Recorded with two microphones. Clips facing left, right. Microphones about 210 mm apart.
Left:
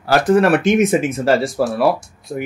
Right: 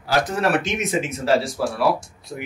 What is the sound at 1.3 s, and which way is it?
Speech, centre (ahead or behind).